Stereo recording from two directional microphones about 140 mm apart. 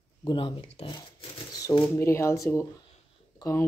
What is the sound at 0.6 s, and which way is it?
Speech, 45° left (ahead or behind).